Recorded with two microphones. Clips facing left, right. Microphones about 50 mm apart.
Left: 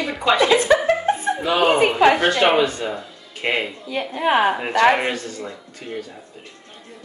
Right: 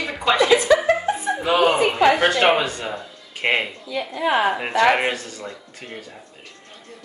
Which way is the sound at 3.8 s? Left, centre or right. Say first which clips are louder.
Left 2 dB; left.